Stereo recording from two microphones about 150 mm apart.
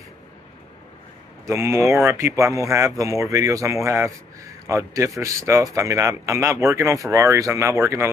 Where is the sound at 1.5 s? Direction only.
15° right (ahead or behind).